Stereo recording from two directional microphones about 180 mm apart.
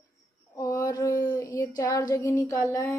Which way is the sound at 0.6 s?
15° left (ahead or behind).